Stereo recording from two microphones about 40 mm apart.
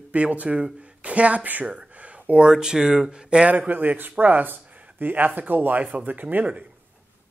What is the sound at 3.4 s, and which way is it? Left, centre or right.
Speech, right.